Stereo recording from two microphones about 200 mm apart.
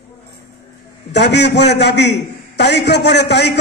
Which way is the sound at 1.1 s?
60° left (ahead or behind).